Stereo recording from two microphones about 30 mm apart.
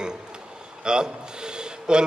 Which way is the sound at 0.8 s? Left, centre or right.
Right.